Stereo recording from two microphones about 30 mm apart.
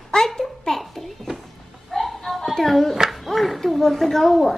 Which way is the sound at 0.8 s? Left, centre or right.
Centre.